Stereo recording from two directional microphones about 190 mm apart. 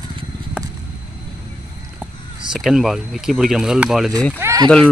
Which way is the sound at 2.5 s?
Centre (ahead or behind).